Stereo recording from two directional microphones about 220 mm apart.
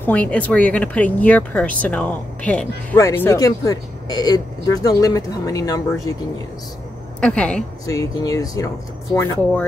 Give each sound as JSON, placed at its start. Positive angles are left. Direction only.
{"t": 0.0, "sound": "speech", "side_deg": 5}
{"t": 7.2, "sound": "a woman's voice", "side_deg": 5}
{"t": 7.8, "sound": "speech", "side_deg": 15}